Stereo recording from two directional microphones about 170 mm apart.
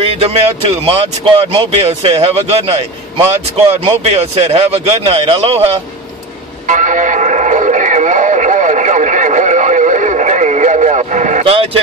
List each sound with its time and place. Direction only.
0.2 s speech: 35° right (ahead or behind)
6.7 s music: 50° right (ahead or behind)